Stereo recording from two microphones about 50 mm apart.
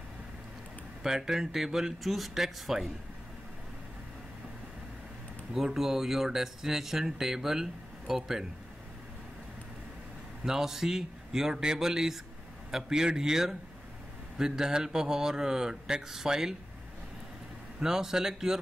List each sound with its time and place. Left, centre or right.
1.0 s speech: centre
5.5 s speech: centre
10.4 s speech: centre
17.7 s speech: centre